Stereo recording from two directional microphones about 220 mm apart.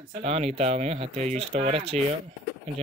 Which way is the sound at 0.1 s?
30° right (ahead or behind).